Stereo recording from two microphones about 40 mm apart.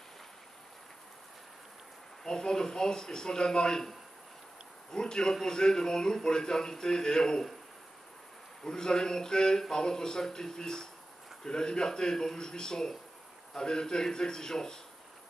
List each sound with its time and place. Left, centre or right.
2.2 s speech: centre
4.9 s speech: centre
8.6 s speech: centre